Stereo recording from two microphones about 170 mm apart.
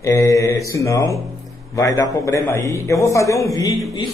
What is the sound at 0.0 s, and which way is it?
A man's voice, 20° left (ahead or behind).